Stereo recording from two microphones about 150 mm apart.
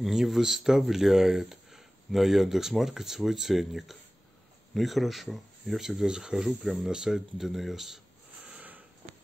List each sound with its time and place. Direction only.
0.0 s speech: centre (ahead or behind)
8.5 s sniff: 10° right (ahead or behind)